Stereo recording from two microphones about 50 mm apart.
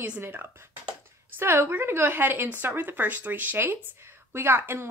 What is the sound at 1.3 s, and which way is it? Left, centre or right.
A woman's voice, right.